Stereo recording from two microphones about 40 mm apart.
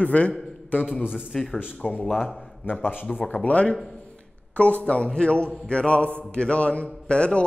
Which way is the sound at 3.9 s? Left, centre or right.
Left.